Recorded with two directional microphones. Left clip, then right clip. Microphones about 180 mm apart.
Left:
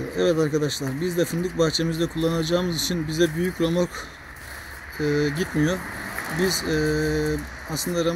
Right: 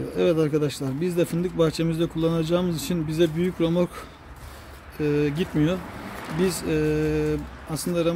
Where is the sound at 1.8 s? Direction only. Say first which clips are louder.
Even; 35° right (ahead or behind).